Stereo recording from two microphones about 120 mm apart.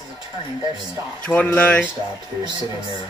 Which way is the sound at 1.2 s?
10° left (ahead or behind).